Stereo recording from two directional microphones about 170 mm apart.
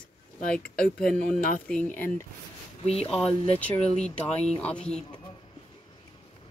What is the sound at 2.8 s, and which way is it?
Speech, 35° left (ahead or behind).